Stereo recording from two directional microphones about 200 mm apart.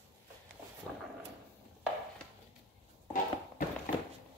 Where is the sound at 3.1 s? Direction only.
40° left (ahead or behind).